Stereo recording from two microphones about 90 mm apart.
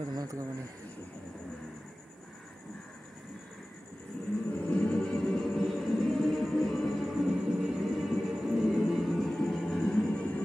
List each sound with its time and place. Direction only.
0.1 s speech: 45° right (ahead or behind)
4.5 s music: 15° left (ahead or behind)